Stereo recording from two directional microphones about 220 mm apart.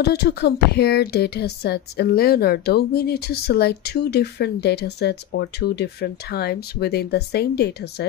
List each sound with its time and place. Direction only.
0.0 s speech: 45° left (ahead or behind)